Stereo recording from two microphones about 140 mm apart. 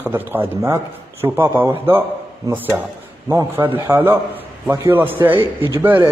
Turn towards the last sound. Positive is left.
turn(degrees=-15)  # may be behind; listen again after turning